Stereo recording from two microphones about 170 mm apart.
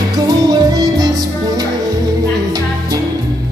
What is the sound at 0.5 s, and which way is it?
Music, 25° right (ahead or behind).